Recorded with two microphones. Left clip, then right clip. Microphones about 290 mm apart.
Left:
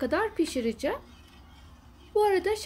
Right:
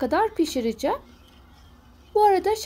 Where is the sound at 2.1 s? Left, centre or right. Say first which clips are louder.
Right 6 dB; centre.